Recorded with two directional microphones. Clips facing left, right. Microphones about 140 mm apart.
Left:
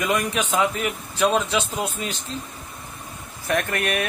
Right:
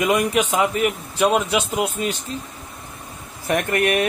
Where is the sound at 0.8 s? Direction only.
5° right (ahead or behind).